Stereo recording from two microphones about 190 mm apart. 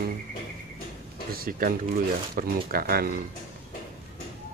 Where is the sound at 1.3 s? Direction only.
50° right (ahead or behind).